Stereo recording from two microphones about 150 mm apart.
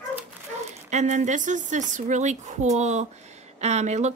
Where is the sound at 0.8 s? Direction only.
50° right (ahead or behind).